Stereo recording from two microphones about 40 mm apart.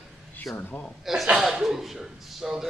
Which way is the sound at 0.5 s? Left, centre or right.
Left.